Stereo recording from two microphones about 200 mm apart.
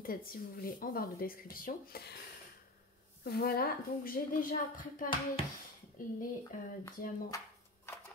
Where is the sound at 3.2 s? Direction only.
50° left (ahead or behind).